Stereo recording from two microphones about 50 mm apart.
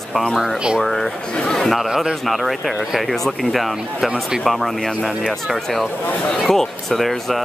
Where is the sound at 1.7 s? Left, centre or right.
Centre.